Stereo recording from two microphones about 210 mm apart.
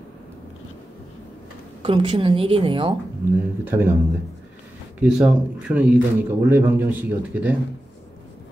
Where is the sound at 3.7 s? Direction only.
10° right (ahead or behind).